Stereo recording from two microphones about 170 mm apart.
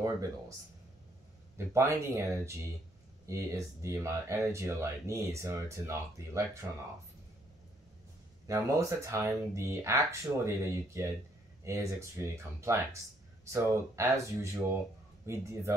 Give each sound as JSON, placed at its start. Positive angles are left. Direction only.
{"t": 1.7, "sound": "speech", "side_deg": -15}
{"t": 8.5, "sound": "speech", "side_deg": -20}